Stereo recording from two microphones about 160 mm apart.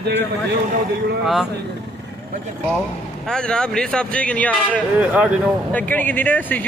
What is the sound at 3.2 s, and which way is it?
Speech, 5° left (ahead or behind).